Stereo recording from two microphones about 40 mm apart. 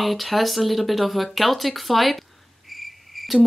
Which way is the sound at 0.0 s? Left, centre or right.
Centre.